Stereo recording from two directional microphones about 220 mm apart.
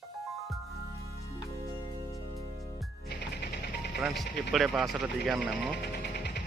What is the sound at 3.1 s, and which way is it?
Mechanisms, 50° left (ahead or behind).